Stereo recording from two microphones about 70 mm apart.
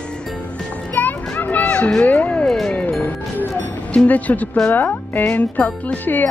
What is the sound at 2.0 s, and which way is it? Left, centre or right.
Speech, left.